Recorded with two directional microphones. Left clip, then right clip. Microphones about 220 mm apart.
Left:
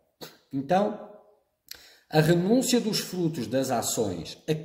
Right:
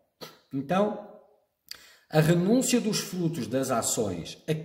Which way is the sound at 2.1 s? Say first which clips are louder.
Left 1 dB; 10° right (ahead or behind).